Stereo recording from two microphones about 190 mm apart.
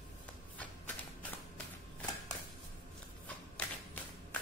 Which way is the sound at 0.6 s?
10° left (ahead or behind).